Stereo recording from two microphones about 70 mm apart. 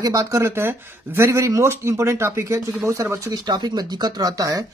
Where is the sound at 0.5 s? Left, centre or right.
Right.